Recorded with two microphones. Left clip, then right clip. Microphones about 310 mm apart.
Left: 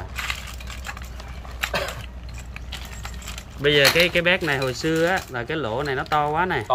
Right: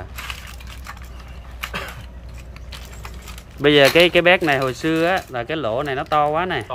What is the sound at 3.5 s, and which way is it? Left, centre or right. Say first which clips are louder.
Speech: right 4 dB; centre.